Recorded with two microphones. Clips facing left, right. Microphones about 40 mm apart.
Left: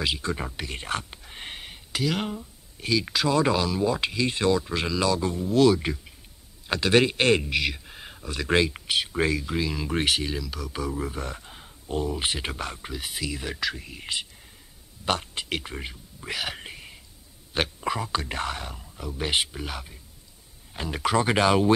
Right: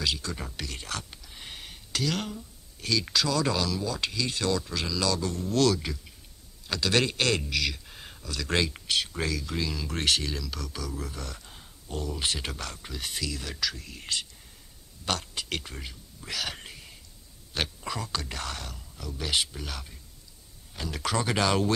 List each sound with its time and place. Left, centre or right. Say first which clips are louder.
0.0 s speech: left 4 dB; left
1.6 s a sound: left 3 dB; centre
2.3 s speech: left 5 dB; centre
5.8 s a man's voice: left 6 dB; left; by 10.7 s centre
10.7 s speech: left 6 dB; left
13.0 s speech: even; centre
13.3 s speech: left 4 dB; left
15.0 s whispering: left 4 dB; left
17.6 s speech: left 5 dB; left